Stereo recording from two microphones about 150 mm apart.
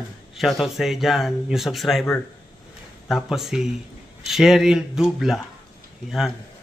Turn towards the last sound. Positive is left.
turn(degrees=0)  # may be behind; listen again after turning